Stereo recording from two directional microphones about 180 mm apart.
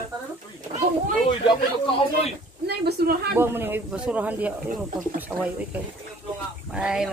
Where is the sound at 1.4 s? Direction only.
30° left (ahead or behind).